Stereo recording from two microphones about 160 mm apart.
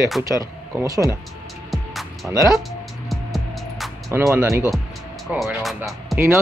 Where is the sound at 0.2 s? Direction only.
20° right (ahead or behind).